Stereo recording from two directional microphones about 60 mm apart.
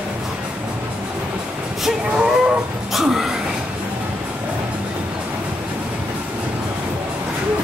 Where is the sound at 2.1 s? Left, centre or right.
Centre.